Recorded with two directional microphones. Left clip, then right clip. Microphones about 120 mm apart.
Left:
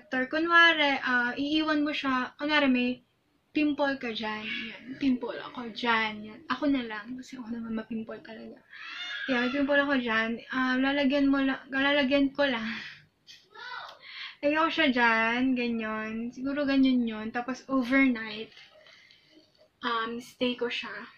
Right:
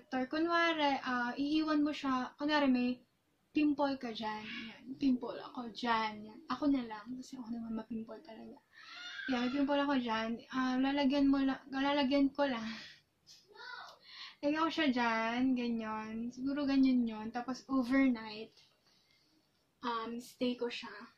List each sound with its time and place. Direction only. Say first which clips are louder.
0.1 s speech: left 10 dB; 35° right (ahead or behind)
14.0 s speech: left 8 dB; 30° right (ahead or behind)
17.9 s speech: left 8 dB; 40° right (ahead or behind)
19.8 s speech: left 8 dB; 40° right (ahead or behind)